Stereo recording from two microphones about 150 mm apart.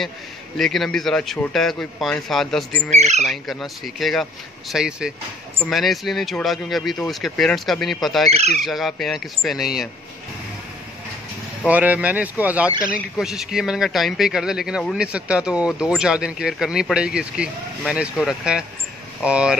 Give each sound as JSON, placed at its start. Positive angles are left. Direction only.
{"t": 0.6, "sound": "a man's voice", "side_deg": 0}
{"t": 2.9, "sound": "speech", "side_deg": -50}
{"t": 3.3, "sound": "a man's voice", "side_deg": 0}
{"t": 8.3, "sound": "speech", "side_deg": -45}
{"t": 8.6, "sound": "a man's voice", "side_deg": 0}
{"t": 11.6, "sound": "a man's voice", "side_deg": -10}